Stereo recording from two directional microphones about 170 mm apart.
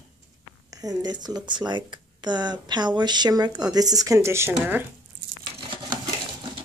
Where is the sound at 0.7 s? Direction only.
20° right (ahead or behind).